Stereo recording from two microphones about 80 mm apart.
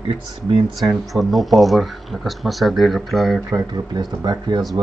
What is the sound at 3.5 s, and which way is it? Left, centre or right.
Speech, right.